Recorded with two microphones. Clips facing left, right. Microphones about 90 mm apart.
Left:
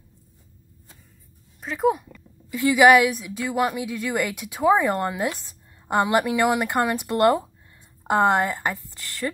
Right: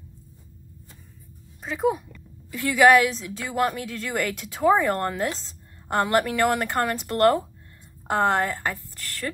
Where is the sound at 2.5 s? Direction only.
15° left (ahead or behind).